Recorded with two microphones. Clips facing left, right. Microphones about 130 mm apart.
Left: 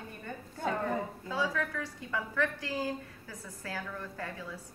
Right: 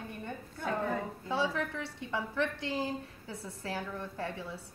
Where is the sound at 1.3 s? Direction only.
25° right (ahead or behind).